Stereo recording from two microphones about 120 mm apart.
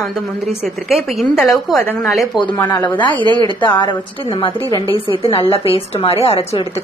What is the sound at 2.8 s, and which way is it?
A woman's voice, 40° left (ahead or behind).